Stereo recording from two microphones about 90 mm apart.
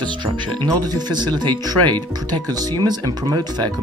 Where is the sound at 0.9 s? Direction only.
50° right (ahead or behind).